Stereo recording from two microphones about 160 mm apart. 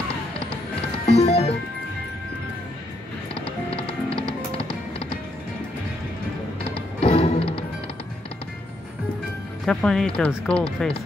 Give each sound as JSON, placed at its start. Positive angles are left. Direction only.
{"t": 1.0, "sound": "music", "side_deg": 40}
{"t": 3.3, "sound": "music", "side_deg": 35}
{"t": 6.7, "sound": "music", "side_deg": 40}
{"t": 9.7, "sound": "speech", "side_deg": 5}